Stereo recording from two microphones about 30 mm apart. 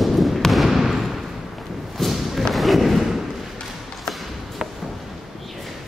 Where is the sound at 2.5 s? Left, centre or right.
Centre.